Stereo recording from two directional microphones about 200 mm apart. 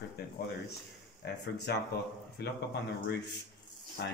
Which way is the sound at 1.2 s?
60° left (ahead or behind).